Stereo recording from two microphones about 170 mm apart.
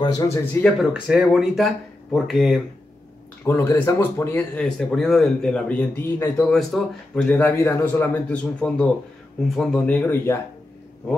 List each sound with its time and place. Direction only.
0.0 s speech: 20° left (ahead or behind)
0.6 s speech: centre (ahead or behind)
3.4 s a man's voice: 15° left (ahead or behind)
4.6 s a man's voice: 5° left (ahead or behind)